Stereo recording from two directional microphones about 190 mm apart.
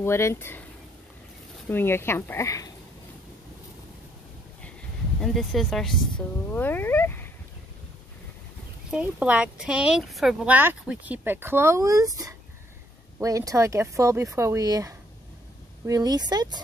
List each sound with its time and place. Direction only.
0.0 s speech: 15° left (ahead or behind)
1.7 s speech: 10° left (ahead or behind)
5.2 s speech: centre (ahead or behind)
8.9 s speech: 5° right (ahead or behind); by 16.6 s 20° right (ahead or behind)